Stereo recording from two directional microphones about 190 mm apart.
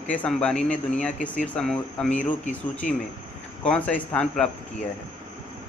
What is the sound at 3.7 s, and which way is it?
Speech, 5° left (ahead or behind).